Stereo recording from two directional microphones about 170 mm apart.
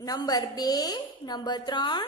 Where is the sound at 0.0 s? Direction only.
20° left (ahead or behind).